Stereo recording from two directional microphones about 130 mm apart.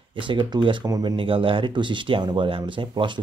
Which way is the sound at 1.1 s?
40° right (ahead or behind).